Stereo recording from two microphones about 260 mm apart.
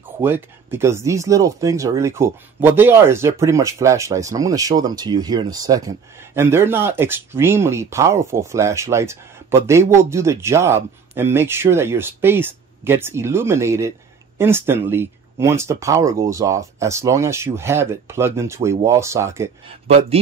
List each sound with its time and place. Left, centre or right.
0.2 s speech: centre
19.9 s speech: right